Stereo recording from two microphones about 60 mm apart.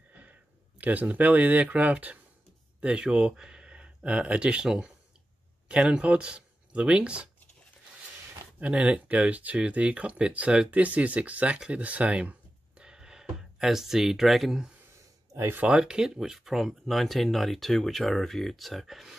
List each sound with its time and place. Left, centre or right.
0.1 s speech: right
8.5 s speech: right
15.3 s speech: right
15.6 s speech: centre